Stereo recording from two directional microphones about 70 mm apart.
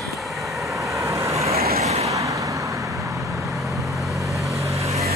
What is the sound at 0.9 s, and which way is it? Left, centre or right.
Vehicle, right.